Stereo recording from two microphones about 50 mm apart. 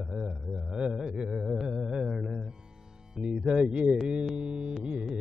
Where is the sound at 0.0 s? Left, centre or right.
Centre.